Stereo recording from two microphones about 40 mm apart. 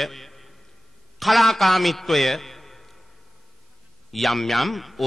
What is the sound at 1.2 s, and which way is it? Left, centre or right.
A man's voice, centre.